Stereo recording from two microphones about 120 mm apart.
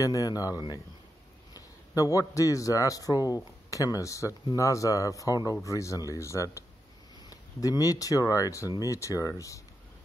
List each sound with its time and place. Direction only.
0.0 s a man's voice: 30° left (ahead or behind)